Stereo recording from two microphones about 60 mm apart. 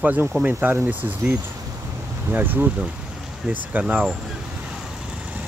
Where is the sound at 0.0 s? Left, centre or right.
Right.